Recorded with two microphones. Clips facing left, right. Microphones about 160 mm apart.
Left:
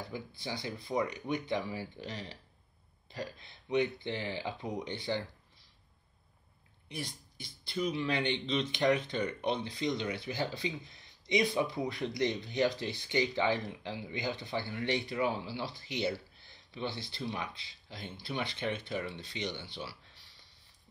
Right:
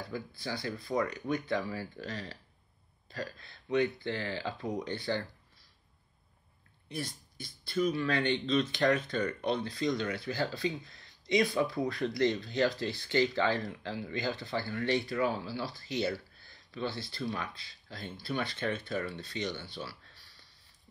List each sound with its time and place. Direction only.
0.1 s speech: 20° left (ahead or behind)
6.9 s speech: 15° left (ahead or behind)